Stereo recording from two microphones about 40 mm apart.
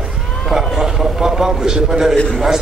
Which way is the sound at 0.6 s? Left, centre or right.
Centre.